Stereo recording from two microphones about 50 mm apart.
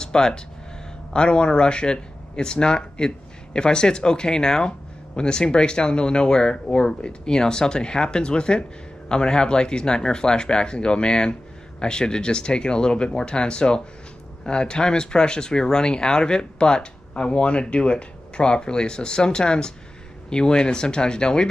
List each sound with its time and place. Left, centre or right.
0.0 s speech: centre